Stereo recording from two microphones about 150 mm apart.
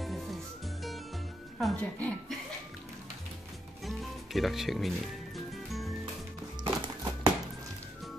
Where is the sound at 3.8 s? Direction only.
Centre (ahead or behind).